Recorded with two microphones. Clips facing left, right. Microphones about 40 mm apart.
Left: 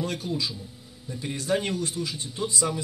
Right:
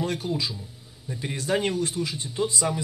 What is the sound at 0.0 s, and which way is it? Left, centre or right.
A man's voice, right.